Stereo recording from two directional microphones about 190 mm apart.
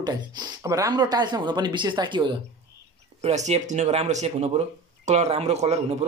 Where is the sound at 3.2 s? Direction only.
35° right (ahead or behind).